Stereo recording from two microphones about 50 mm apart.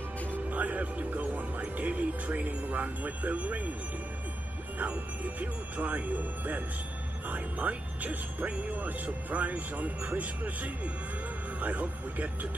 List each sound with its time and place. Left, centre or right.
0.3 s speech: right
4.7 s speech: right